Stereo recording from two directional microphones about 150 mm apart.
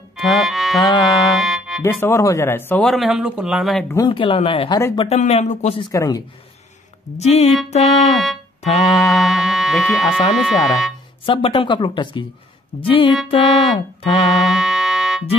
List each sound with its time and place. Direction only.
0.2 s music: centre (ahead or behind)
0.7 s music: 25° left (ahead or behind)
1.3 s music: centre (ahead or behind)
1.8 s speech: 15° left (ahead or behind)
2.8 s speech: centre (ahead or behind)
4.1 s speech: 35° left (ahead or behind)
5.8 s speech: 25° left (ahead or behind)
7.2 s speech: 45° left (ahead or behind)
8.2 s music: centre (ahead or behind)
8.8 s speech: 25° left (ahead or behind)
9.1 s music: centre (ahead or behind)
10.3 s speech: centre (ahead or behind)
11.2 s speech: 35° left (ahead or behind)
14.3 s music: 5° right (ahead or behind)